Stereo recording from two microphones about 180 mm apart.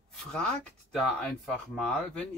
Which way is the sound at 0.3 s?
5° left (ahead or behind).